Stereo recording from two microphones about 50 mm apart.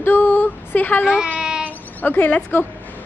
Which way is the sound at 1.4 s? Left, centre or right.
Centre.